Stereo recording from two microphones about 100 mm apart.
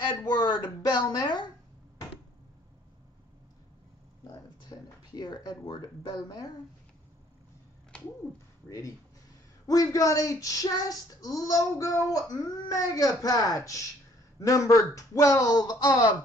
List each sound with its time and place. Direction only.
0.1 s a woman's voice: 45° left (ahead or behind)
4.3 s speech: 40° left (ahead or behind)
8.6 s child singing: 35° left (ahead or behind)